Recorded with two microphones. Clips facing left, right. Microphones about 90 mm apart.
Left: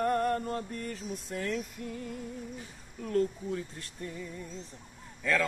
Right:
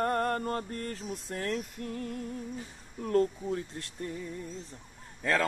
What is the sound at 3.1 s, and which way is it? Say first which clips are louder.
Speech: right 2 dB; 40° right (ahead or behind).